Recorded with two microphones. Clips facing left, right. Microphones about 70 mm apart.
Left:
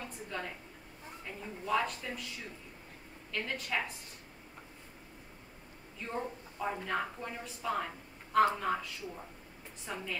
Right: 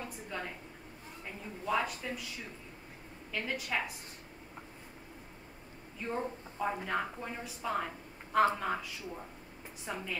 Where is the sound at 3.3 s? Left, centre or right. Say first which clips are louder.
Right 1 dB; centre.